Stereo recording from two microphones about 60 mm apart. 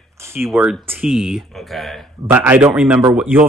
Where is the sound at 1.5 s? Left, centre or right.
Centre.